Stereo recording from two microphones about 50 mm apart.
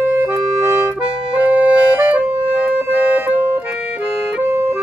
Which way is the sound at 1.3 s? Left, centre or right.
Right.